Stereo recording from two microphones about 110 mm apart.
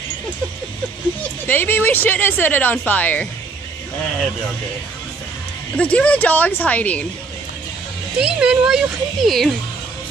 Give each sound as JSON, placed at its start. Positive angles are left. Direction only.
{"t": 1.5, "sound": "speech", "side_deg": 15}
{"t": 5.8, "sound": "speech", "side_deg": 10}
{"t": 8.2, "sound": "speech", "side_deg": -10}